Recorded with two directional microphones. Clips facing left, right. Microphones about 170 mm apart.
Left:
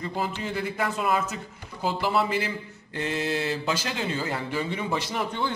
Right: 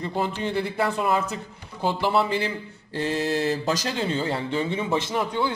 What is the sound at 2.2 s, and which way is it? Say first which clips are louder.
Speech: right 2 dB; 30° right (ahead or behind).